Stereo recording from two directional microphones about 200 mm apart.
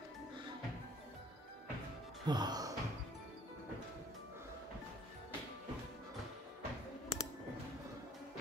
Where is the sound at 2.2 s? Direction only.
20° right (ahead or behind).